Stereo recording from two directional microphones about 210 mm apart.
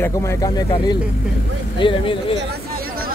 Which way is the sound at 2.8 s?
45° right (ahead or behind).